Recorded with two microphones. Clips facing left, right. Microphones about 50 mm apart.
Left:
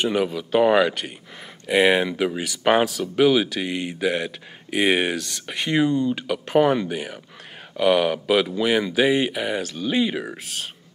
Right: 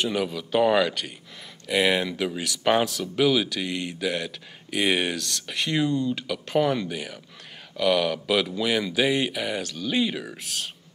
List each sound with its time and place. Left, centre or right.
0.0 s speech: centre